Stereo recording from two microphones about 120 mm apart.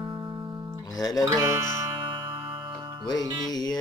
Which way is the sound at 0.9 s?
30° left (ahead or behind).